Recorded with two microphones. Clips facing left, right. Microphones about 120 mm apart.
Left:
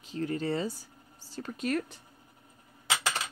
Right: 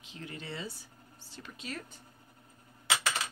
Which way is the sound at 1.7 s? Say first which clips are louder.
Left 11 dB; 70° left (ahead or behind).